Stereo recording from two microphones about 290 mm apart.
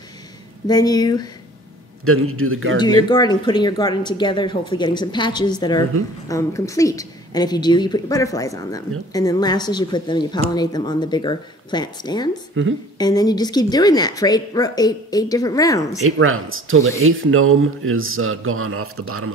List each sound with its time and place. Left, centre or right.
0.7 s speech: centre
2.0 s speech: right
3.1 s speech: centre
12.6 s a woman's voice: right
12.9 s speech: centre
16.0 s speech: right